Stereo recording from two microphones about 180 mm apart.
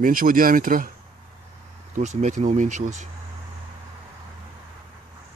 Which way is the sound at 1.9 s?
45° right (ahead or behind).